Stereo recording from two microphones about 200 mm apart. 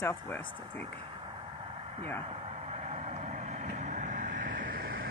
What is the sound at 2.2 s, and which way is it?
Vehicle, 30° right (ahead or behind).